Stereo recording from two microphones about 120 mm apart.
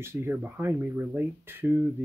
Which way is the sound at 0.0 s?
20° right (ahead or behind).